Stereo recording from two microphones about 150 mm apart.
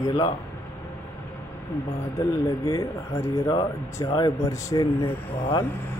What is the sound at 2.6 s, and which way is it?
Speech, 20° left (ahead or behind).